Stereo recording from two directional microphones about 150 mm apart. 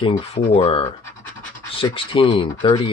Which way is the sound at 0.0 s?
40° left (ahead or behind).